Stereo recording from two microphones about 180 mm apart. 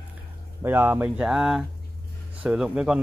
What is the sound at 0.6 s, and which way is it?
Speech, 10° right (ahead or behind).